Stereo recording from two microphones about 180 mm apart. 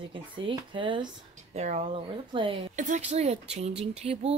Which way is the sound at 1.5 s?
40° right (ahead or behind).